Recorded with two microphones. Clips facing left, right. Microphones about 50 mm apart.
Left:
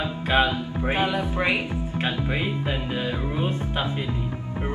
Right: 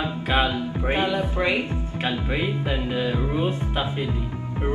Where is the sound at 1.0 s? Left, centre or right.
Centre.